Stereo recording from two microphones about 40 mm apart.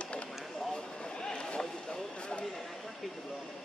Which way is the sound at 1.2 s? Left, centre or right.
Left.